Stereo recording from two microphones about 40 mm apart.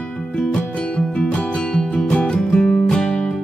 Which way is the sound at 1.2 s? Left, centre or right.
Left.